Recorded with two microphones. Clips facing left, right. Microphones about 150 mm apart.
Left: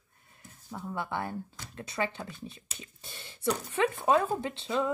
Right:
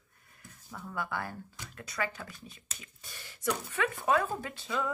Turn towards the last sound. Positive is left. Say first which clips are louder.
# left 4 dB
turn(degrees=25)  # may be behind; listen again after turning